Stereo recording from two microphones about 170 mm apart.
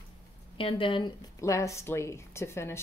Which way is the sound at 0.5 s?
30° left (ahead or behind).